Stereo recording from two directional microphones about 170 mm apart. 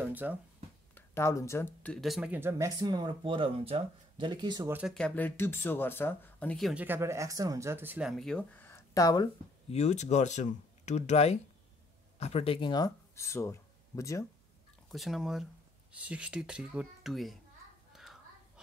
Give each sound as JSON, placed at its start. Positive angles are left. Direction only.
{"t": 0.0, "sound": "speech", "side_deg": -10}
{"t": 0.9, "sound": "speech", "side_deg": 15}
{"t": 4.6, "sound": "speech", "side_deg": -10}
{"t": 4.9, "sound": "speech", "side_deg": 10}
{"t": 9.7, "sound": "speech", "side_deg": 40}
{"t": 14.9, "sound": "speech", "side_deg": 0}
{"t": 17.9, "sound": "a sound", "side_deg": 0}